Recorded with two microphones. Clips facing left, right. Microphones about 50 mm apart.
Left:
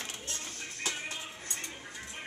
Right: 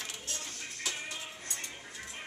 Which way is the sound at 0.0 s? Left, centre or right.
Left.